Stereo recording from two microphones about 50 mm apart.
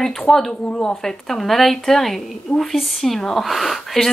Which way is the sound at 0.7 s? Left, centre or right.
Centre.